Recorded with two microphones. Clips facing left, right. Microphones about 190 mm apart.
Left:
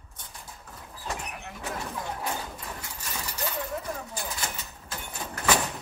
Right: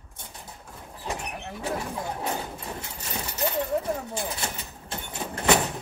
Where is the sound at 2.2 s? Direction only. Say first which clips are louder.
Right 3 dB; 25° right (ahead or behind).